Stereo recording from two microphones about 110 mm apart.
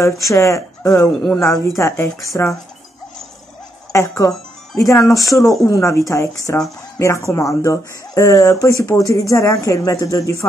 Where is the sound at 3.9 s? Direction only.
30° left (ahead or behind).